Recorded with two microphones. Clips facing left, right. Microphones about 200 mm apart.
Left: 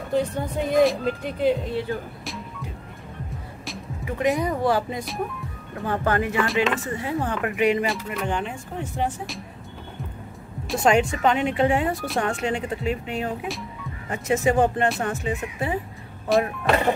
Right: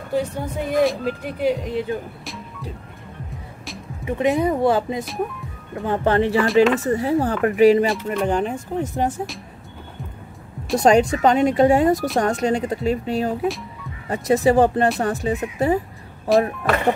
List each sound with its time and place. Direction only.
0.1 s speech: 5° right (ahead or behind)
4.0 s speech: 20° right (ahead or behind)
6.4 s speech: centre (ahead or behind)
6.8 s speech: 40° right (ahead or behind)
7.8 s speech: centre (ahead or behind)
8.2 s speech: 40° right (ahead or behind)
10.8 s speech: 35° right (ahead or behind)
16.3 s speech: centre (ahead or behind)